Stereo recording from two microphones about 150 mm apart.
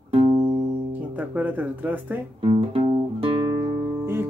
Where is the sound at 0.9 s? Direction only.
10° right (ahead or behind).